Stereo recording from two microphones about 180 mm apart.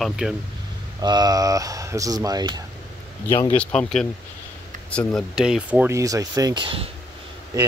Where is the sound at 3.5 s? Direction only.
5° left (ahead or behind); by 6.8 s 30° right (ahead or behind).